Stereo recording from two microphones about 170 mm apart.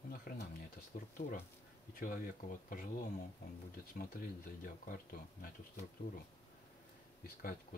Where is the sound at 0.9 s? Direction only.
45° left (ahead or behind).